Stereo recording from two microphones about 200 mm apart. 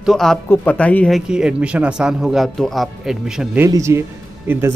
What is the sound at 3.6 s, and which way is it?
Speech, 15° right (ahead or behind).